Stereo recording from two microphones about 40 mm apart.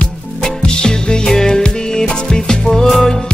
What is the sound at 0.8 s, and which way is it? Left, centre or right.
Music, centre.